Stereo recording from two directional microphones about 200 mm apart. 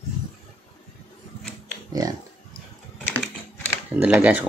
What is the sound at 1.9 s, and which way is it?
Speech, 20° right (ahead or behind).